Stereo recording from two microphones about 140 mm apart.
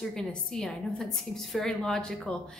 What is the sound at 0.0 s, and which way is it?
A woman's voice, 5° left (ahead or behind).